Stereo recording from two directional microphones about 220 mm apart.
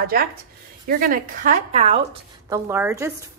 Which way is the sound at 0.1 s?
40° right (ahead or behind).